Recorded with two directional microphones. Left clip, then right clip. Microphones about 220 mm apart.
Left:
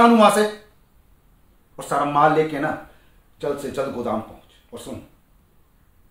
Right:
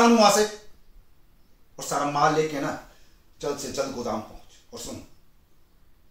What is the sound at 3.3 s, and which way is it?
Speech, centre (ahead or behind).